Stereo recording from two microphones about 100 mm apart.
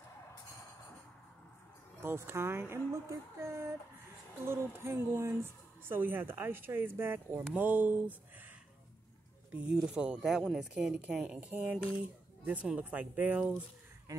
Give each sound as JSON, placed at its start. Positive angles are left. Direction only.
{"t": 2.0, "sound": "a woman's voice", "side_deg": -25}
{"t": 9.5, "sound": "speech", "side_deg": -10}